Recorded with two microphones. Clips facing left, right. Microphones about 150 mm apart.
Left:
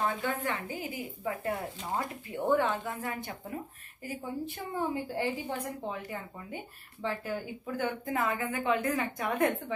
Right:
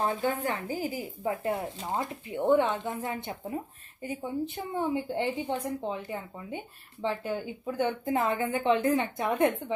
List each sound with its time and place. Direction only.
0.0 s a woman's voice: 35° right (ahead or behind)